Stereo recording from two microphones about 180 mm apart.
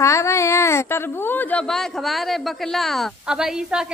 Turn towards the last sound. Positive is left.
turn(degrees=-5)  # may be behind; listen again after turning